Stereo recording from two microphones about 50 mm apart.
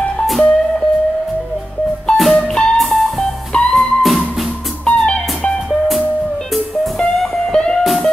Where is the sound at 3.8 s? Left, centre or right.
Centre.